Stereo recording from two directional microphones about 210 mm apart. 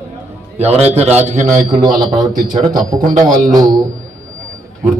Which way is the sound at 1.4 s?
15° right (ahead or behind).